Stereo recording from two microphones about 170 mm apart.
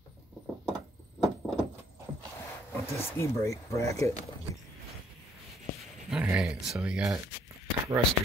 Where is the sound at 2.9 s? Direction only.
15° left (ahead or behind).